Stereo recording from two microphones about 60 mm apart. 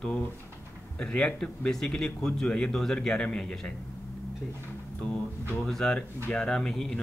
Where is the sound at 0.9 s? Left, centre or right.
Centre.